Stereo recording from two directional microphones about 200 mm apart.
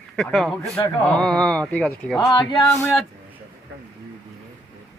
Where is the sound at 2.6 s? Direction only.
5° left (ahead or behind).